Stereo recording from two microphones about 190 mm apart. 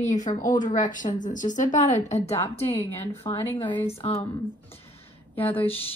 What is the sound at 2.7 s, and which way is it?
Speech, 10° left (ahead or behind).